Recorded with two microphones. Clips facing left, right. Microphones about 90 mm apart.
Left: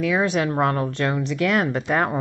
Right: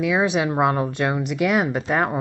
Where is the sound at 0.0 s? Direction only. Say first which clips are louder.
Right 1 dB; 10° right (ahead or behind).